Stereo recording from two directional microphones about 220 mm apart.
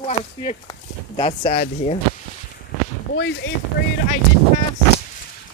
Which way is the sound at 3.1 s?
55° left (ahead or behind).